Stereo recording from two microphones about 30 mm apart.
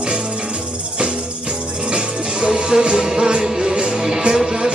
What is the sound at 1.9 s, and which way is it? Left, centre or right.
Music, right.